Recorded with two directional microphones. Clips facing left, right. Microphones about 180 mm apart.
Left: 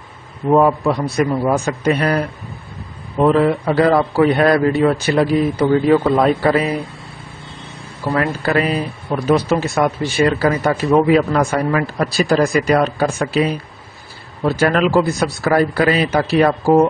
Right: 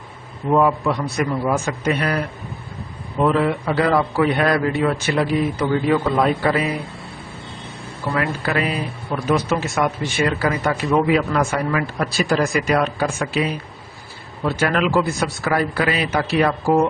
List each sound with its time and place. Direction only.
0.5 s speech: 40° left (ahead or behind)
3.2 s speech: 35° left (ahead or behind)
8.1 s speech: 40° left (ahead or behind)